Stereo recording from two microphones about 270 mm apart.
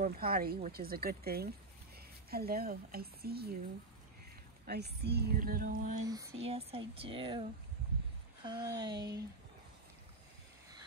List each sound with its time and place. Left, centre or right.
0.0 s speech: right
4.6 s speech: right
6.0 s speech: centre
8.5 s speech: centre